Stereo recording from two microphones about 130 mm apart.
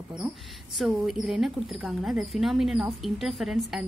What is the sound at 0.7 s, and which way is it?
Speech, 5° right (ahead or behind).